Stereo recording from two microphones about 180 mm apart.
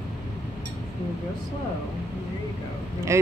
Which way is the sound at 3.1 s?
15° right (ahead or behind).